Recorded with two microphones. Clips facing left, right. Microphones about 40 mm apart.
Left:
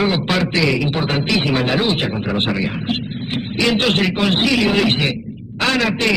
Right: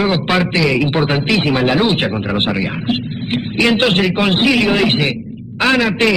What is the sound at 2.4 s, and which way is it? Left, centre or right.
Speech, centre.